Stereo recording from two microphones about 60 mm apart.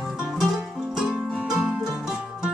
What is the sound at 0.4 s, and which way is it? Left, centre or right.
Music, centre.